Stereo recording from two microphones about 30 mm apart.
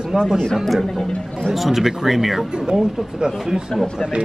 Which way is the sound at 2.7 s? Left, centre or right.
Right.